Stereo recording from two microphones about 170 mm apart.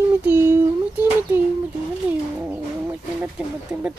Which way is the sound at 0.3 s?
15° right (ahead or behind).